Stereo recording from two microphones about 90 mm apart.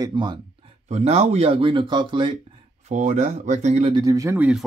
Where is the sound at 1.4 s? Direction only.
90° right; by 2.3 s 60° right (ahead or behind).